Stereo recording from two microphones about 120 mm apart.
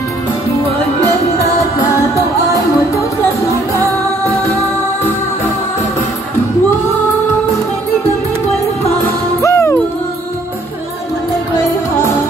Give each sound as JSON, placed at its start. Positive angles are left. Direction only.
{"t": 1.6, "sound": "music", "side_deg": 25}
{"t": 9.4, "sound": "music", "side_deg": 25}